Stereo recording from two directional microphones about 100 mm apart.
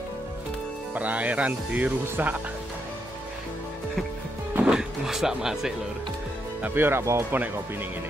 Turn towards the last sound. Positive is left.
turn(degrees=-20)  # may be behind; listen again after turning